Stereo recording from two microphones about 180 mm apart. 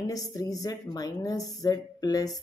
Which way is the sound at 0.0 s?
20° left (ahead or behind).